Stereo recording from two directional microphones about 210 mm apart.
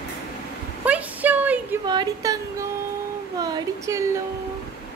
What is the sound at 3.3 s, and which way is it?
Speech, 20° right (ahead or behind).